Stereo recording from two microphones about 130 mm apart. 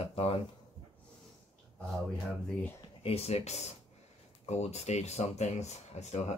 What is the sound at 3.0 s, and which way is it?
Speech, 50° left (ahead or behind).